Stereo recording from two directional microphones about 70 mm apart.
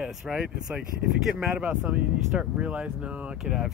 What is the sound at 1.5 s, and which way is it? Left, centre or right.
Speech, centre.